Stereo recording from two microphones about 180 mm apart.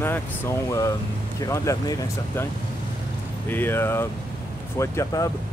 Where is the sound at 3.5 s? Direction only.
10° left (ahead or behind).